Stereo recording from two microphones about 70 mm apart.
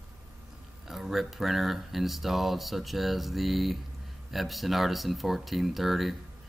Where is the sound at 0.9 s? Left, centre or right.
Centre.